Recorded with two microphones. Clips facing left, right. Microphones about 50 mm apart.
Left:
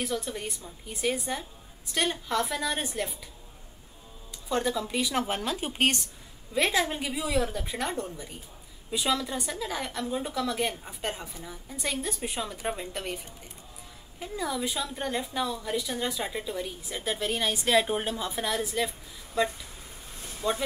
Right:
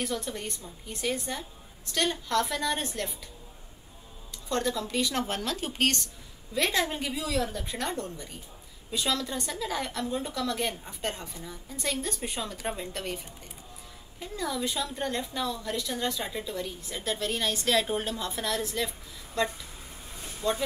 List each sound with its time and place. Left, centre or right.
0.0 s a woman's voice: centre
4.5 s a woman's voice: centre
14.2 s a woman's voice: centre